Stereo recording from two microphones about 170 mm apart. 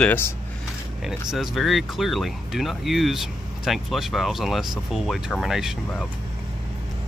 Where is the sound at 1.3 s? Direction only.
Centre (ahead or behind).